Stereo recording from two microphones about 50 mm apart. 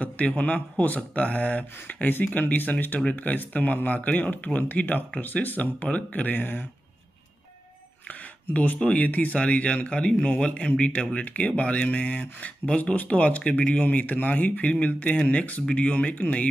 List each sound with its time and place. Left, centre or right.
0.4 s speech: left
8.1 s speech: left